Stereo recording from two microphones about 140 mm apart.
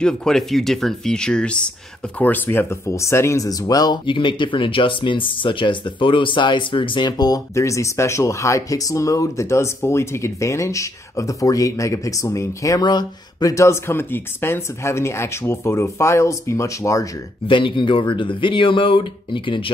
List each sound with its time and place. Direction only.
0.0 s speech: 5° left (ahead or behind); by 17.1 s 20° left (ahead or behind)
17.5 s speech: 35° left (ahead or behind)